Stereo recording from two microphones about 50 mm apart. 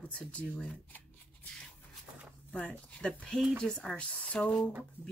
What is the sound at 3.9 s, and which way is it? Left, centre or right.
Speech, left.